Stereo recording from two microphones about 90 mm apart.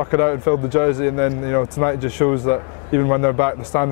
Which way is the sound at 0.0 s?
25° left (ahead or behind).